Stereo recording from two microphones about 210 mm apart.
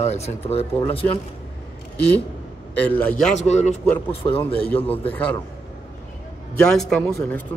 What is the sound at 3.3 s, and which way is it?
Speech, 30° left (ahead or behind).